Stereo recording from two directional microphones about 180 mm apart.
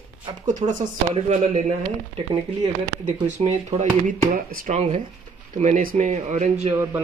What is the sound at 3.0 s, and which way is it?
Speech, 40° right (ahead or behind).